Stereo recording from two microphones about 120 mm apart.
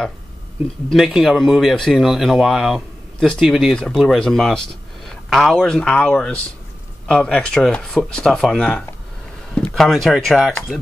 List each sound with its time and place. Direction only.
1.0 s speech: centre (ahead or behind)